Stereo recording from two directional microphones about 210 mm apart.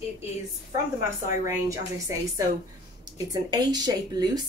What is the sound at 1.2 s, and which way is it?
Speech, 15° right (ahead or behind).